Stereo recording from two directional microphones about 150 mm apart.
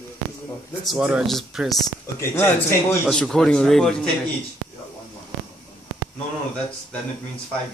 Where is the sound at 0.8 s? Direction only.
5° right (ahead or behind).